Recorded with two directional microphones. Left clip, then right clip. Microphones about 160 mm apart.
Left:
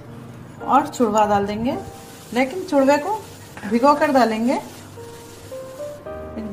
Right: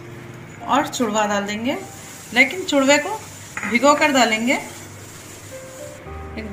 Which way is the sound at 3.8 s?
20° left (ahead or behind).